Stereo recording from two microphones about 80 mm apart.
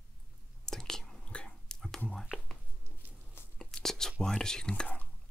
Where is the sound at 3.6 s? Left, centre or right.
Centre.